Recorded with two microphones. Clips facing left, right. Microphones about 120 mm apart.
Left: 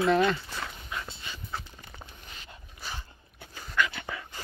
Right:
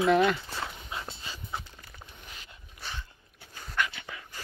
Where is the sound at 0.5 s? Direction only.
25° right (ahead or behind).